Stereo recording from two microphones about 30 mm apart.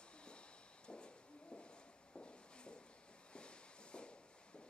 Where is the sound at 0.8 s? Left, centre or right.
Left.